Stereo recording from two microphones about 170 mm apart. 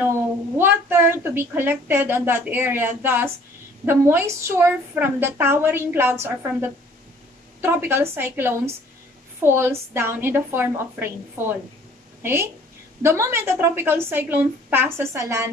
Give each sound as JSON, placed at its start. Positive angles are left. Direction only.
{"t": 0.6, "sound": "a woman's voice", "side_deg": -15}